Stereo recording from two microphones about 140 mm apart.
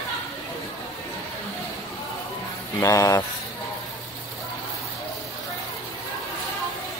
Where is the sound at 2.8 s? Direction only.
25° left (ahead or behind).